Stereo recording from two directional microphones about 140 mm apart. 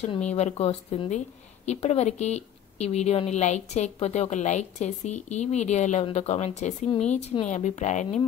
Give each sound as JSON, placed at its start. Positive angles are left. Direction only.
{"t": 0.3, "sound": "a woman's voice", "side_deg": 50}